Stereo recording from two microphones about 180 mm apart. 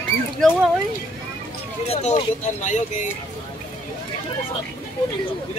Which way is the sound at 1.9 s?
35° left (ahead or behind).